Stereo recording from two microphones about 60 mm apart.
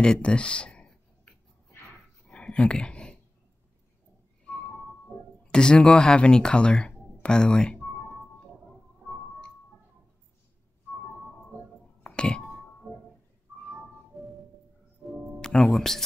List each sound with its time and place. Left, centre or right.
0.0 s a sound: centre
5.4 s speech: centre
7.2 s music: centre
12.0 s music: centre
15.0 s music: centre
15.4 s speech: centre